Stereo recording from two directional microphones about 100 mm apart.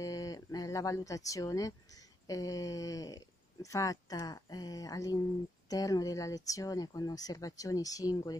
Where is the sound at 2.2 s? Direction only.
35° left (ahead or behind).